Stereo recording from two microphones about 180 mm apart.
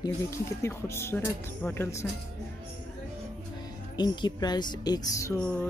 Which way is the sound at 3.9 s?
25° left (ahead or behind).